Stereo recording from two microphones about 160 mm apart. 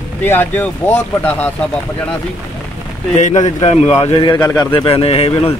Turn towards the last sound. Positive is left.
turn(degrees=40)  # may be behind; listen again after turning